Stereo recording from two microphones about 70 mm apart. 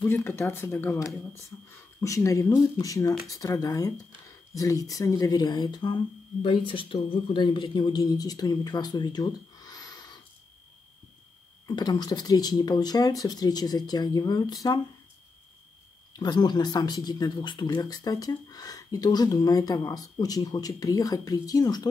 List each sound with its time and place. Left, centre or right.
0.0 s speech: left
1.7 s a man's voice: left
8.0 s speech: left
11.6 s speech: left
16.1 s speech: left
17.8 s speech: left